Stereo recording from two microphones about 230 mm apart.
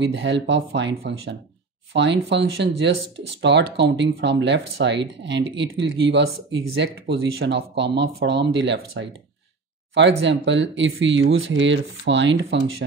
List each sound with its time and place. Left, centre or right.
0.0 s speech: right